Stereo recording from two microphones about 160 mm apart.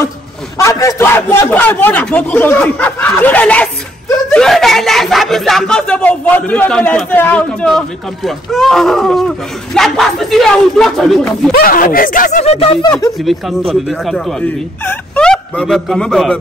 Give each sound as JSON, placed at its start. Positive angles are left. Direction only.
{"t": 0.6, "sound": "a man's voice", "side_deg": 20}
{"t": 11.5, "sound": "speech", "side_deg": 65}
{"t": 13.2, "sound": "speech", "side_deg": 0}